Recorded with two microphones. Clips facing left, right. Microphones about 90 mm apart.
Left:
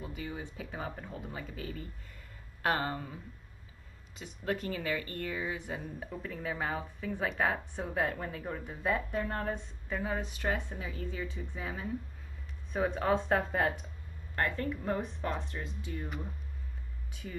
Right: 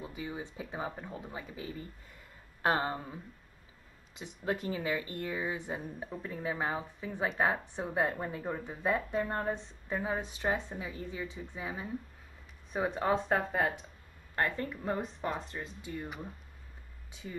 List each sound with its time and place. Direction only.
0.0 s speech: 20° right (ahead or behind)
14.3 s speech: 20° right (ahead or behind)
17.1 s speech: 20° right (ahead or behind)